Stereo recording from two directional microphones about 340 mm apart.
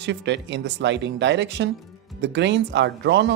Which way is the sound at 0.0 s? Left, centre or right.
Right.